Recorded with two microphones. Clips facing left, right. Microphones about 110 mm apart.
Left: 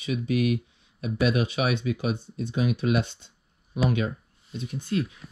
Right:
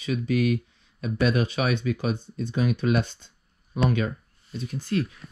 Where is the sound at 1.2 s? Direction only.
40° right (ahead or behind).